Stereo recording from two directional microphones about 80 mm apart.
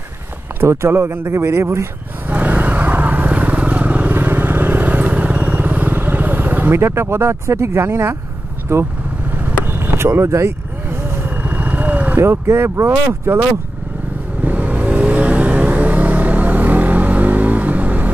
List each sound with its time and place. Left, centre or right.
0.6 s a man's voice: right
2.2 s vehicle: right
8.7 s a man's voice: right
9.7 s vehicle: right
11.2 s vehicle: right
12.2 s a man's voice: right
14.4 s vehicle: right